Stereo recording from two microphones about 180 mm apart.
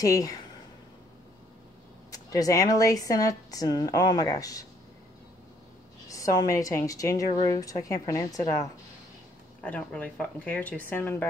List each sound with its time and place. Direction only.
0.0 s speech: 20° left (ahead or behind)
2.0 s speech: 20° left (ahead or behind)
6.0 s speech: 20° left (ahead or behind)
9.6 s speech: 10° left (ahead or behind)